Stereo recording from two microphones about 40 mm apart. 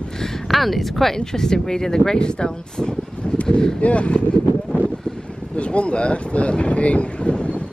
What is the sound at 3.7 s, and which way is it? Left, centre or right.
Speech, left.